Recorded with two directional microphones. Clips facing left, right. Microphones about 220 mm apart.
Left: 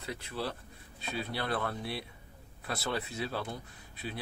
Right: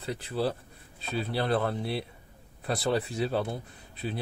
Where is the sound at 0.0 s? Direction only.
35° right (ahead or behind).